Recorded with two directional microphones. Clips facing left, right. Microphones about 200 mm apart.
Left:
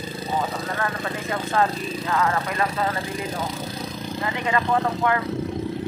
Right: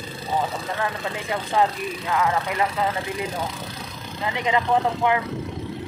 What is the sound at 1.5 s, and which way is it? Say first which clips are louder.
Speech: right 1 dB; 15° right (ahead or behind).